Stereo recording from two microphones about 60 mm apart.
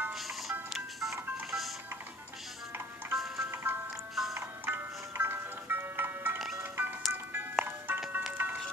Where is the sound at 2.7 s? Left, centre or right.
Right.